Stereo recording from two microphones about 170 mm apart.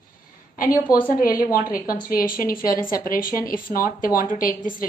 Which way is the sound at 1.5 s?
55° left (ahead or behind).